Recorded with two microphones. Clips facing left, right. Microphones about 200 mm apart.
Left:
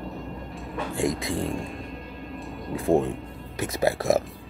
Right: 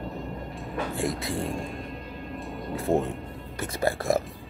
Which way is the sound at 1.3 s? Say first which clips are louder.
Left 2 dB; centre (ahead or behind).